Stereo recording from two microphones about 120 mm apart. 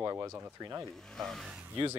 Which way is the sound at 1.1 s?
5° left (ahead or behind).